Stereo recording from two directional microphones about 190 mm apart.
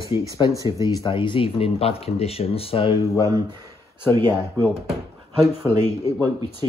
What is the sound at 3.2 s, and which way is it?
Speech, 20° right (ahead or behind).